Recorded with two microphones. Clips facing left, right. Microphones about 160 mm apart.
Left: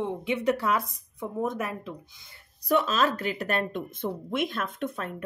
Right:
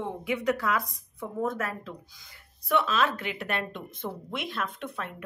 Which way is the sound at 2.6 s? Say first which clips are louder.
Left 2 dB; 40° left (ahead or behind).